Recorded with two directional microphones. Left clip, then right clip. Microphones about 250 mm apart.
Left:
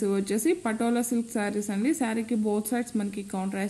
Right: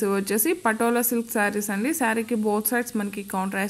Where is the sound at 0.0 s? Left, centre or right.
Centre.